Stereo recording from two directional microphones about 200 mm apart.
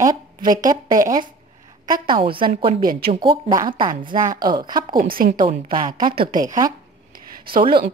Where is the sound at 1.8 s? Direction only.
20° right (ahead or behind).